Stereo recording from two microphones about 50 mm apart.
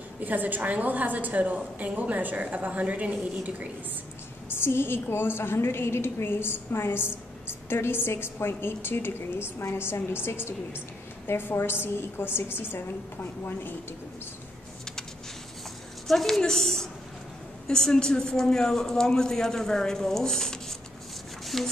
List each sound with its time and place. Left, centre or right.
0.2 s a woman's voice: right
4.5 s a woman's voice: left
16.1 s a woman's voice: centre